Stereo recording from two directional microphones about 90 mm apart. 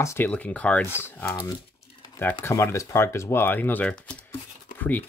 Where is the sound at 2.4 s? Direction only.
30° left (ahead or behind).